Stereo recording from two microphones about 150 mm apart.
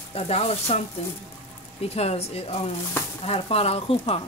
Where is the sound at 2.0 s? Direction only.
45° left (ahead or behind).